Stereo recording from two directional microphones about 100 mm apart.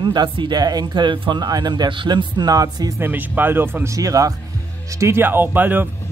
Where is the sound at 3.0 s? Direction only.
20° right (ahead or behind).